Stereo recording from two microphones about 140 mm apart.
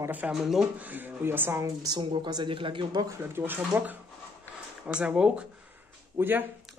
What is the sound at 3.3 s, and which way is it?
Speech, 15° right (ahead or behind).